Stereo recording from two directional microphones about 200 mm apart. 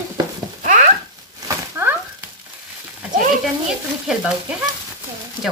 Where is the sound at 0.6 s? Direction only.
40° right (ahead or behind).